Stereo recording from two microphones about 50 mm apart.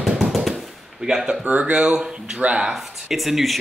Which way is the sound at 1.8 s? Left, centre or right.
Centre.